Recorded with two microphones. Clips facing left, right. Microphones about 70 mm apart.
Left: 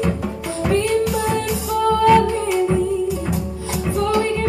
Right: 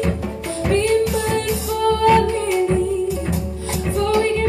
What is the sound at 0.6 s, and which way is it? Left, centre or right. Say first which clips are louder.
Music: right 1 dB; centre.